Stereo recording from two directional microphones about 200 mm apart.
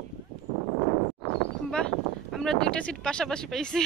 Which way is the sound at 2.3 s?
5° left (ahead or behind).